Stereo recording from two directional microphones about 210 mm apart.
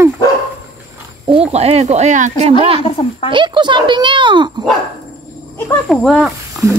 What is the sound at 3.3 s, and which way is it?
A child's voice, 20° right (ahead or behind).